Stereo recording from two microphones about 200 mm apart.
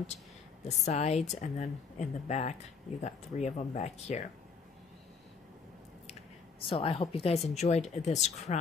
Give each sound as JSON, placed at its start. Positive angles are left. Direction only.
{"t": 0.8, "sound": "speech", "side_deg": 35}
{"t": 6.6, "sound": "a woman's voice", "side_deg": 25}